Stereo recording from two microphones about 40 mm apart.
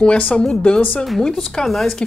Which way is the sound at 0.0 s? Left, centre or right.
Left.